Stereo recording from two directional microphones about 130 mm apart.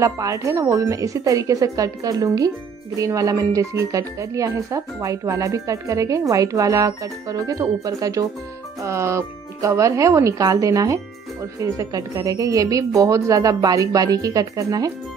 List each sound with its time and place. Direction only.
0.0 s speech: 25° right (ahead or behind)